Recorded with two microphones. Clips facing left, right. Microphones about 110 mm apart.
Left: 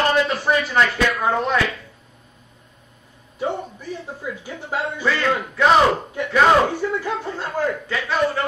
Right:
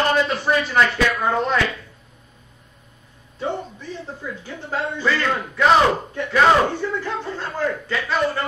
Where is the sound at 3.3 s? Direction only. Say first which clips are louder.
Left 1 dB; 10° left (ahead or behind).